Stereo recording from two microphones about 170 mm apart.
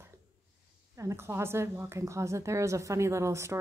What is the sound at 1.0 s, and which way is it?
A woman's voice, 15° right (ahead or behind).